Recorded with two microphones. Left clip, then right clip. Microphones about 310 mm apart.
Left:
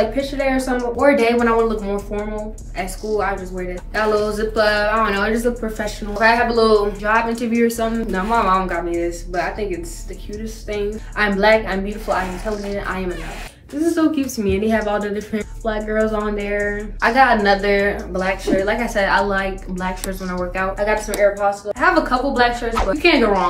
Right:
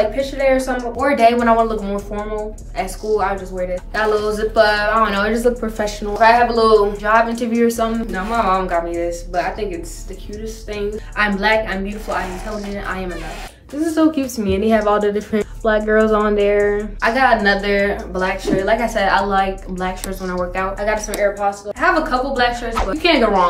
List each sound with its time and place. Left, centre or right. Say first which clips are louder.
0.1 s speech: right 4 dB; centre
6.6 s speech: right 2 dB; centre
8.1 s speech: left 3 dB; centre
13.9 s a woman's voice: right 2 dB; centre
17.0 s speech: left 1 dB; centre